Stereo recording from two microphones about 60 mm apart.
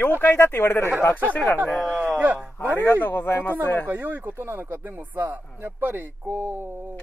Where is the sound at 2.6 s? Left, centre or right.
Left.